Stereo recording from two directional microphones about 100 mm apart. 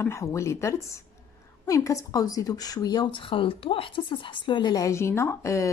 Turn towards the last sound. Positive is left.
turn(degrees=30)  # may be behind; listen again after turning